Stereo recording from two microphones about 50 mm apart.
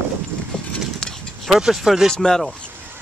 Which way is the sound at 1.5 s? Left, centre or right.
Centre.